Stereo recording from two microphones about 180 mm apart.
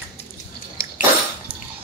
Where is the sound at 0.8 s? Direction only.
55° left (ahead or behind).